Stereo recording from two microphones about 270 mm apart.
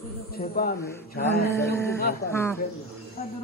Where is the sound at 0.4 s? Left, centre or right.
Left.